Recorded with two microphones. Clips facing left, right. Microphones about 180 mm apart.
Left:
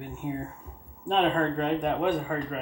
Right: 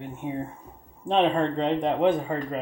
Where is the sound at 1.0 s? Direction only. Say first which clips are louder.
Right 2 dB; 20° right (ahead or behind).